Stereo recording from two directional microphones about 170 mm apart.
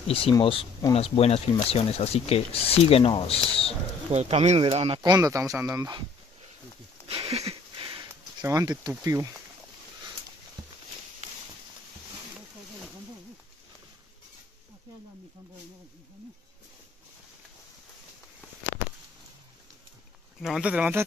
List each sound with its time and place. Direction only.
0.1 s speech: 30° left (ahead or behind)
4.1 s speech: 40° right (ahead or behind)
5.0 s speech: 20° right (ahead or behind)
7.1 s a sound: 35° right (ahead or behind)
9.0 s speech: 20° right (ahead or behind)
20.4 s speech: 5° right (ahead or behind)